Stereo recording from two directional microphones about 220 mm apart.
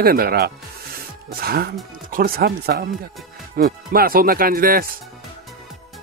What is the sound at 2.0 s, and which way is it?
Speech, 40° right (ahead or behind).